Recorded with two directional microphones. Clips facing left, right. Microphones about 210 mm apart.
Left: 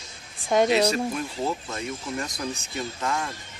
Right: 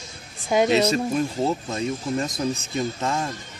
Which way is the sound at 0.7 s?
25° right (ahead or behind).